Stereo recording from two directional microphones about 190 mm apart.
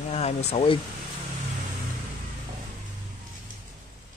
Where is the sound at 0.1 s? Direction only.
35° left (ahead or behind).